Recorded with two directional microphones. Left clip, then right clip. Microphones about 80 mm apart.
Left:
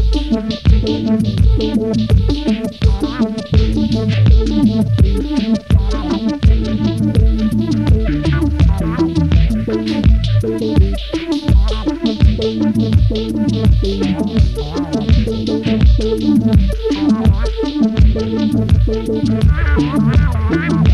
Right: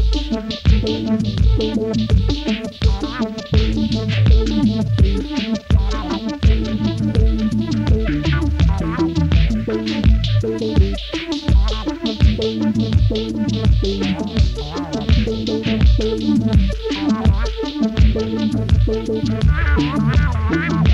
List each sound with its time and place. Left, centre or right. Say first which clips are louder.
0.3 s music: left 4 dB; left